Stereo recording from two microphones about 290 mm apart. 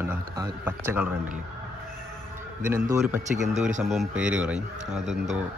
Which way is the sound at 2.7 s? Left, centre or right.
Centre.